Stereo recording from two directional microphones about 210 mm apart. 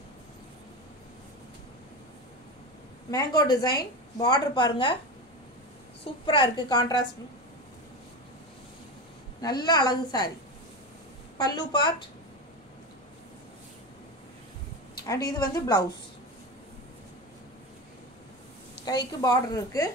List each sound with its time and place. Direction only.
3.1 s a woman's voice: 15° left (ahead or behind)
6.2 s a woman's voice: 25° left (ahead or behind)
9.4 s a woman's voice: 20° left (ahead or behind)
11.3 s a woman's voice: 20° left (ahead or behind)
15.0 s a woman's voice: 15° left (ahead or behind)
19.2 s a woman's voice: 15° left (ahead or behind)